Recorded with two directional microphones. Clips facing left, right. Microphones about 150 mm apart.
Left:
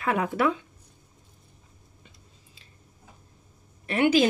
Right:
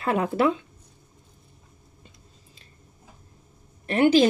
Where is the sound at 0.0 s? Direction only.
30° right (ahead or behind).